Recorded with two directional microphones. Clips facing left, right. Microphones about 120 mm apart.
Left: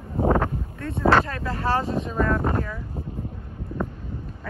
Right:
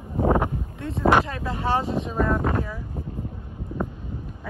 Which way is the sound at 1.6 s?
Centre (ahead or behind).